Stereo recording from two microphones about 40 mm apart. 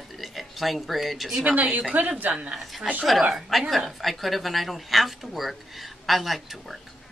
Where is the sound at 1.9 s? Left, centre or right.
Right.